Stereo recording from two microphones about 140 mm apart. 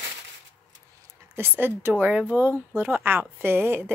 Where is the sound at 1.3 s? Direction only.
15° right (ahead or behind).